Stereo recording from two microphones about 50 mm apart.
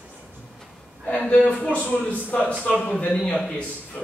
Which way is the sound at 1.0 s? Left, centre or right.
Left.